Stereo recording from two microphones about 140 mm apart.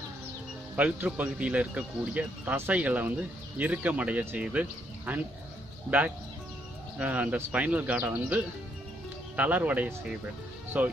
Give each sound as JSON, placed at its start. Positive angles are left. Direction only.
{"t": 0.7, "sound": "speech", "side_deg": -10}
{"t": 9.4, "sound": "speech", "side_deg": -10}